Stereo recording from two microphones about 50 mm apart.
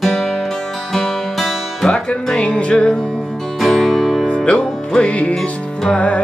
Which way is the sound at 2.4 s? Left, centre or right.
Left.